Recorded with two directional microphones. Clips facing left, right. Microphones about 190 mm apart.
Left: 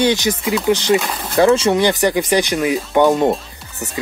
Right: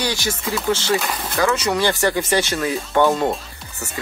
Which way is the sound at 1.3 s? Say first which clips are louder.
Left 7 dB; 30° left (ahead or behind).